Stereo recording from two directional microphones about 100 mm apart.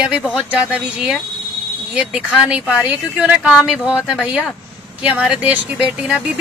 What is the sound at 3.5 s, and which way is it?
A woman's voice, centre (ahead or behind).